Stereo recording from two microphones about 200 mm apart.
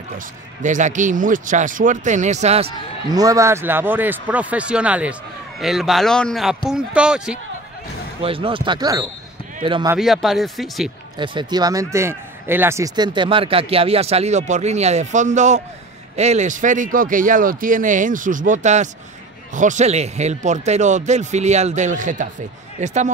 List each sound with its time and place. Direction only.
0.6 s speech: 40° right (ahead or behind)
3.1 s speech: 15° right (ahead or behind)
8.2 s speech: 25° right (ahead or behind)
9.9 s speech: centre (ahead or behind)
11.1 s speech: 25° right (ahead or behind)